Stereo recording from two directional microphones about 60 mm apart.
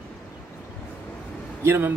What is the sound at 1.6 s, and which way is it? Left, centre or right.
Speech, right.